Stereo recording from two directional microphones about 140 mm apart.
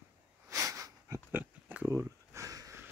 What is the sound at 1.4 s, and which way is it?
Sniff, 10° right (ahead or behind).